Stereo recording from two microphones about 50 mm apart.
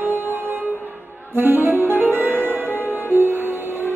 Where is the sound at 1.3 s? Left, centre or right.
Right.